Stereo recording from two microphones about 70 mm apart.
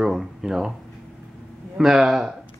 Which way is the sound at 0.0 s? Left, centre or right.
Centre.